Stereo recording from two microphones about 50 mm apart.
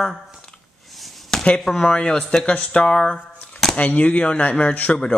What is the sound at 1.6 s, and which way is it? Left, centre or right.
Speech, centre.